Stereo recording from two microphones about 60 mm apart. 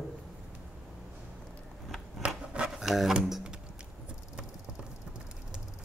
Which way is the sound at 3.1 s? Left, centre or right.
Centre.